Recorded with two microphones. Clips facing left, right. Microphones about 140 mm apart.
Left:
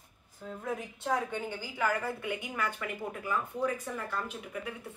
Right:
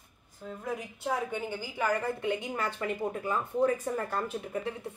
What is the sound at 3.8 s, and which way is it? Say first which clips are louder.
Speech: right 5 dB; 40° right (ahead or behind).